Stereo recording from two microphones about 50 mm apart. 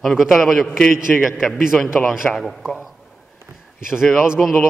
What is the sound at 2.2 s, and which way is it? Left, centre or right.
Speech, centre.